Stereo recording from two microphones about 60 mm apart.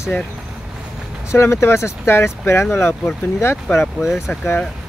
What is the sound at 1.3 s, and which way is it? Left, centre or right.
Speech, left.